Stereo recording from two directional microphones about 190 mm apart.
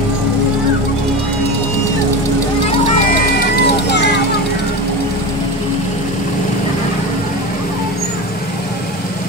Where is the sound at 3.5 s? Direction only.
60° left (ahead or behind).